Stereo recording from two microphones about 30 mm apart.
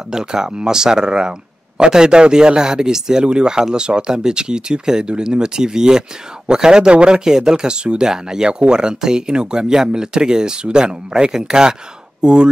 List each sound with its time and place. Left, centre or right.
0.1 s speech: right
7.2 s speech: right
8.1 s speech: centre
8.5 s speech: right